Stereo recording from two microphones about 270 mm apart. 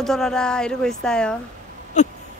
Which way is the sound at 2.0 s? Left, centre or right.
Left.